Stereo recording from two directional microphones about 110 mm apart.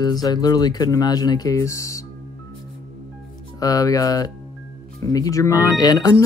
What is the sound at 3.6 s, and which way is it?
Speech, 35° left (ahead or behind).